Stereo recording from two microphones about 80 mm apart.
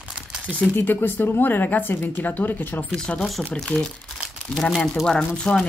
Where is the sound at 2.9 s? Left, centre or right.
Centre.